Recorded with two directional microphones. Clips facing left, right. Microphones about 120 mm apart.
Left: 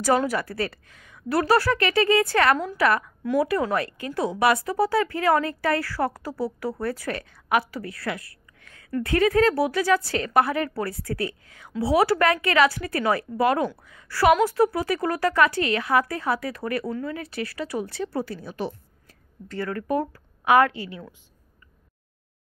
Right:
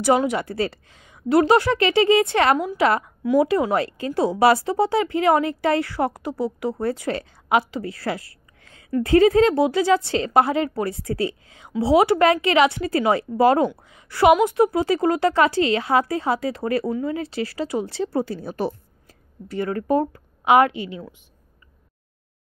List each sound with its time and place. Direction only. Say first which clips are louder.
0.0 s a woman's voice: right 3 dB; 20° right (ahead or behind)
18.4 s a sound: right 5 dB; 40° right (ahead or behind)
19.4 s a woman's voice: right 4 dB; 15° right (ahead or behind)